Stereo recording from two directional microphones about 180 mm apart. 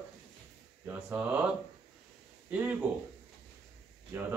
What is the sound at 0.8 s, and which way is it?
Speech, 10° right (ahead or behind).